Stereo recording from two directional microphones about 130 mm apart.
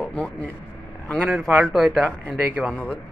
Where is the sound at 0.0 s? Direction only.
5° left (ahead or behind).